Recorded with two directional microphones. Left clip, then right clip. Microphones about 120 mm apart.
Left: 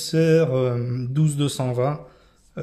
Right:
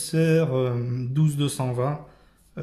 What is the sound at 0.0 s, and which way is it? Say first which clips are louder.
Speech: left 4 dB; 30° left (ahead or behind).